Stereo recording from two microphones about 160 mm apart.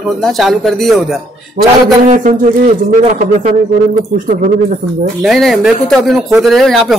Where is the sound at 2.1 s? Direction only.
50° right (ahead or behind).